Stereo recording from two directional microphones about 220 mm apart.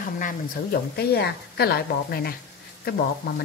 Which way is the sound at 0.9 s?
45° left (ahead or behind).